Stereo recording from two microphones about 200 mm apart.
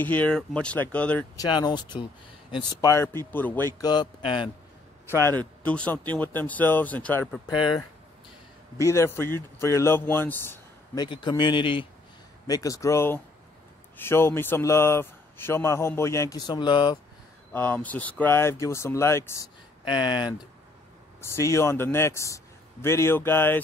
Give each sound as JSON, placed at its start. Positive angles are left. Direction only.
{"t": 0.0, "sound": "a man's voice", "side_deg": 10}
{"t": 1.4, "sound": "a man's voice", "side_deg": 20}
{"t": 3.8, "sound": "speech", "side_deg": 20}
{"t": 5.2, "sound": "a man's voice", "side_deg": 10}
{"t": 7.4, "sound": "speech", "side_deg": 25}
{"t": 8.8, "sound": "a man's voice", "side_deg": 15}
{"t": 11.1, "sound": "a man's voice", "side_deg": 20}
{"t": 17.5, "sound": "a man's voice", "side_deg": 10}
{"t": 19.9, "sound": "a man's voice", "side_deg": 25}